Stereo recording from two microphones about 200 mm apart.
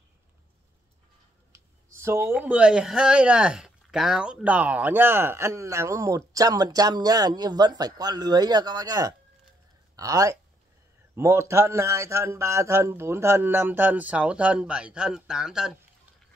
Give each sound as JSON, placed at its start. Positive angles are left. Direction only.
{"t": 1.5, "sound": "speech", "side_deg": -15}